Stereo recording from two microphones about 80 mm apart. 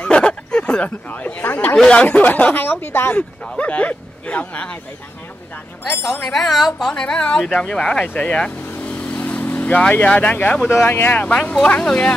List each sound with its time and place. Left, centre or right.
0.0 s a sound: centre
1.8 s speech: centre
3.2 s speech: centre
6.2 s speech: centre
9.1 s vehicle: centre
10.0 s speech: centre